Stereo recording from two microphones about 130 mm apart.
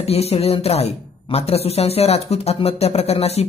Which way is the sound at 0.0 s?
50° left (ahead or behind).